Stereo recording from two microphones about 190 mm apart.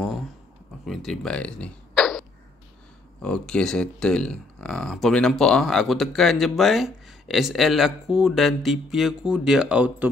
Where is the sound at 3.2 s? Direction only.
5° left (ahead or behind).